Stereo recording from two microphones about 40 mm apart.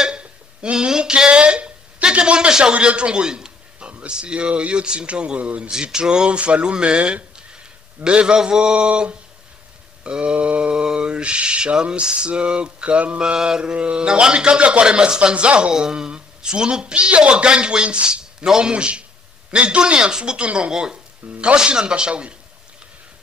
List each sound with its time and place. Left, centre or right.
0.0 s a sound: right
2.0 s a man's voice: right
4.1 s mantra: right
5.6 s mantra: centre
7.3 s a sound: right
8.4 s mantra: centre
13.2 s mantra: centre
15.7 s speech: centre
16.8 s mantra: right